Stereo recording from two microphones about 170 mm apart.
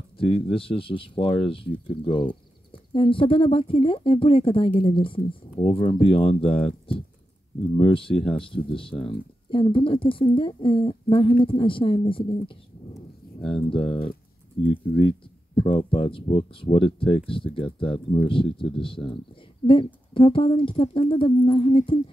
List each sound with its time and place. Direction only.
0.2 s speech: 30° left (ahead or behind)
13.4 s speech: centre (ahead or behind)
13.7 s speech: 30° left (ahead or behind)